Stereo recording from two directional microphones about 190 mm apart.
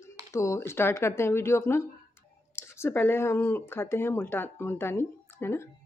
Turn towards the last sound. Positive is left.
turn(degrees=15)  # may be behind; listen again after turning